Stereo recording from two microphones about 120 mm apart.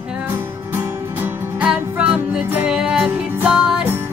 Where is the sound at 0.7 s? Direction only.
15° right (ahead or behind).